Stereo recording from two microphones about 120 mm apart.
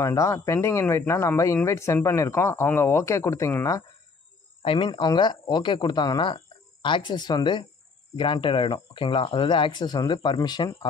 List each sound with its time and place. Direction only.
0.0 s speech: 25° left (ahead or behind)
4.6 s speech: 45° left (ahead or behind)